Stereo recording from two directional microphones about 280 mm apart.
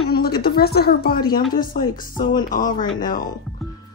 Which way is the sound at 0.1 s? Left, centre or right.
Left.